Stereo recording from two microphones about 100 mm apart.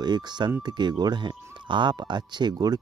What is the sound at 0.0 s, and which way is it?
Speech, 45° right (ahead or behind).